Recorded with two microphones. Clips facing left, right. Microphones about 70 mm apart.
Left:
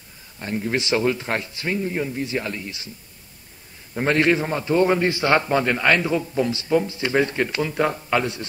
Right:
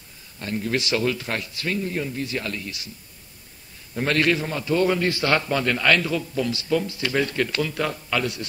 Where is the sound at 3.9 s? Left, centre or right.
Left.